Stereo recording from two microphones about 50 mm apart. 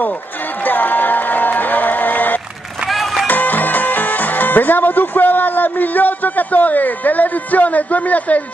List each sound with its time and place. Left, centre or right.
0.7 s music: left
2.9 s music: centre
3.3 s music: left